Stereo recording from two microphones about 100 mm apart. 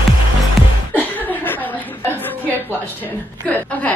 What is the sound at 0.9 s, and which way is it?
Chuckle, 15° left (ahead or behind).